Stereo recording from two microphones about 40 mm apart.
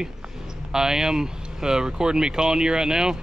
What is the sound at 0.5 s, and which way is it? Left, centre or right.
Speech, centre.